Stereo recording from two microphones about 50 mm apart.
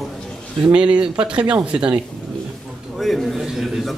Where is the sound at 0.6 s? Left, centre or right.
Right.